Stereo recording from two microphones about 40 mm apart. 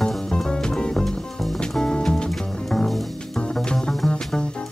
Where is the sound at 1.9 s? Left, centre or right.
Centre.